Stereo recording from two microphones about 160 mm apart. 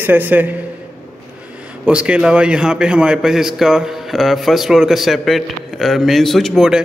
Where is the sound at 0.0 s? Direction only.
10° right (ahead or behind).